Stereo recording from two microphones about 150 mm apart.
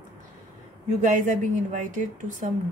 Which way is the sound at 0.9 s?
55° right (ahead or behind).